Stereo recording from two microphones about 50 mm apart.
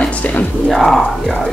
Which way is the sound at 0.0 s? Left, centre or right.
Left.